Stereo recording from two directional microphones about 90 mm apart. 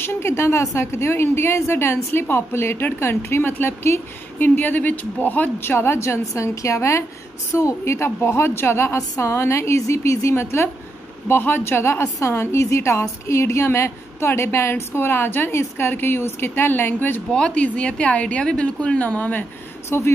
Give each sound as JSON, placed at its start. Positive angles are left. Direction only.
{"t": 0.0, "sound": "a woman's voice", "side_deg": 25}
{"t": 17.3, "sound": "a woman's voice", "side_deg": 10}